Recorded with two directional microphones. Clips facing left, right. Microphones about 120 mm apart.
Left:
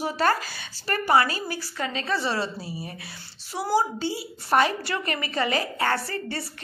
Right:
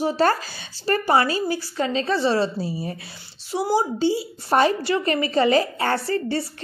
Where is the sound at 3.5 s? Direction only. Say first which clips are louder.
Right 3 dB; 20° right (ahead or behind).